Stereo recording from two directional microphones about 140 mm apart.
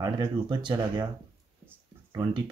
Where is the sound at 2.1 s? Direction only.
35° right (ahead or behind).